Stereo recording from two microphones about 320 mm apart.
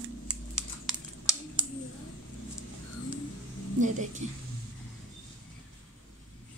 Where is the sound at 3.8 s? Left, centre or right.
Right.